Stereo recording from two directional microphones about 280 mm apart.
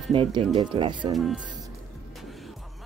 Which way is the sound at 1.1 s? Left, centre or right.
Centre.